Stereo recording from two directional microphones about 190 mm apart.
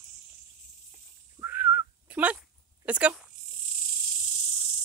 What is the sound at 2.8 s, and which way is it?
Speech, 5° right (ahead or behind).